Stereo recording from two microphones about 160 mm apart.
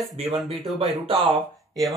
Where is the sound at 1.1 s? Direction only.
35° right (ahead or behind).